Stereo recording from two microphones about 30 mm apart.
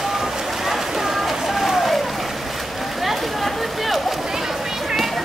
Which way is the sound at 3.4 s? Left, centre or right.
Centre.